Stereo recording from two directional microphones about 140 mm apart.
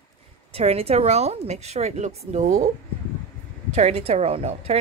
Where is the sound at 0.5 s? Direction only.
45° right (ahead or behind).